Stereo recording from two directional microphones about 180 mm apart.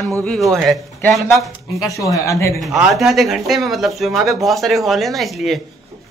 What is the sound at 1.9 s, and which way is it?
Speech, 20° left (ahead or behind).